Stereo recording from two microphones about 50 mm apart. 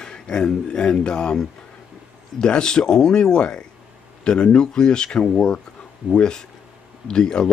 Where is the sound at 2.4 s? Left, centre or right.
Centre.